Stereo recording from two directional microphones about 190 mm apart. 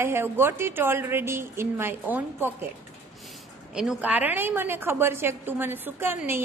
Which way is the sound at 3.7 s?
5° right (ahead or behind).